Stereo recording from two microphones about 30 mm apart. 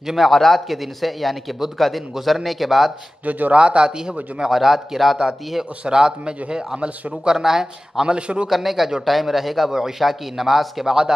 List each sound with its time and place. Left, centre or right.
0.0 s a man's voice: centre
0.3 s speech: centre
3.3 s a man's voice: right
3.5 s a man's voice: right
4.1 s a man's voice: centre
5.2 s a man's voice: centre
5.9 s a man's voice: right
7.2 s a man's voice: centre
8.0 s a man's voice: right
8.5 s a man's voice: centre